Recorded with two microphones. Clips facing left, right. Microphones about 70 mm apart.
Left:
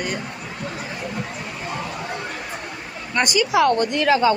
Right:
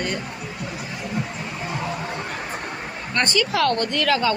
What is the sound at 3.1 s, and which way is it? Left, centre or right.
Speech, centre.